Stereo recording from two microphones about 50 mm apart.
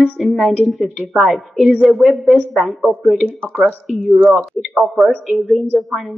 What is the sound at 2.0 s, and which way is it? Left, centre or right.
Speech, centre.